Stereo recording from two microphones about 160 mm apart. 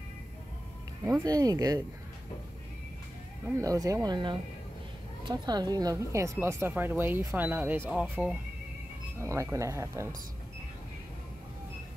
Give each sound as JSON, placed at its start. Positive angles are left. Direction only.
{"t": 1.2, "sound": "speech", "side_deg": -25}
{"t": 3.5, "sound": "speech", "side_deg": -20}
{"t": 9.2, "sound": "speech", "side_deg": -15}